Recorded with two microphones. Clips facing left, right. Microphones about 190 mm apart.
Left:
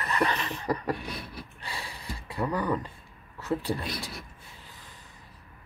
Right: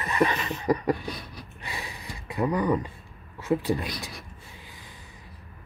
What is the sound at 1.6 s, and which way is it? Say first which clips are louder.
Gasp: right 2 dB; 20° right (ahead or behind).